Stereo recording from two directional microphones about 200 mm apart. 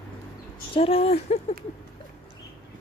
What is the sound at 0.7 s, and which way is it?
Speech, 30° left (ahead or behind).